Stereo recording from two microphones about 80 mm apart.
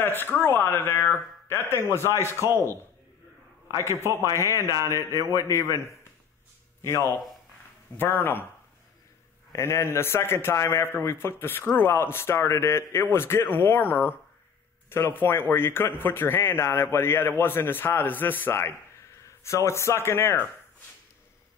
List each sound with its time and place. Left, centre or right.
0.0 s a man's voice: left
2.3 s a man's voice: right
3.8 s a man's voice: right
5.1 s a man's voice: left
9.5 s a man's voice: left